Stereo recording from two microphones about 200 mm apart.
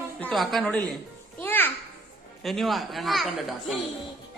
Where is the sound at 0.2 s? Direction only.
Centre (ahead or behind).